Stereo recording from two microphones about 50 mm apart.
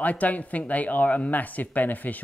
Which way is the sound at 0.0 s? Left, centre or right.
Left.